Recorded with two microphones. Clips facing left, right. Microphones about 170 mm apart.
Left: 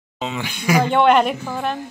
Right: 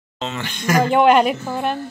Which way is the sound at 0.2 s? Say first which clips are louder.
Even; 10° left (ahead or behind).